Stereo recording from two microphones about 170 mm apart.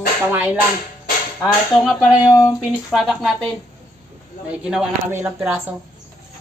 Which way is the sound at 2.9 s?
Centre (ahead or behind).